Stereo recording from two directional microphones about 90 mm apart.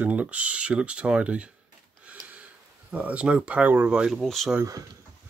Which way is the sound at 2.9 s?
15° right (ahead or behind).